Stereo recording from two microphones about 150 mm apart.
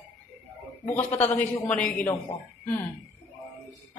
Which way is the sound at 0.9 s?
10° left (ahead or behind).